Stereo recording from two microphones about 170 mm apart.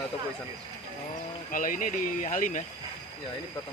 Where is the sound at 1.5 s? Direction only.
50° left (ahead or behind).